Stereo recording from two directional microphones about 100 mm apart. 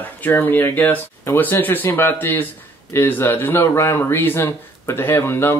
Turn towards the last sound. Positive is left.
turn(degrees=25)  # may be behind; listen again after turning